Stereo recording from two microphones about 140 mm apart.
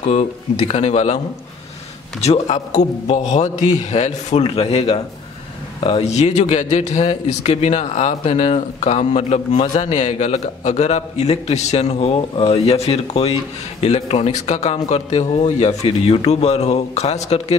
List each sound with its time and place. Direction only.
0.0 s a man's voice: 55° left (ahead or behind)
2.2 s a man's voice: 50° left (ahead or behind)